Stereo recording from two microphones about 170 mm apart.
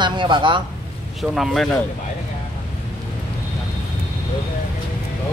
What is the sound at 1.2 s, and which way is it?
Speech, centre (ahead or behind).